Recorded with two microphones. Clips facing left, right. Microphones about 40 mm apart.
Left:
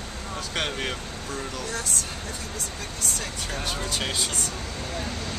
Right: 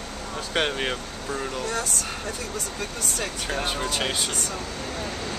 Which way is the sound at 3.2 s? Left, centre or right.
Right.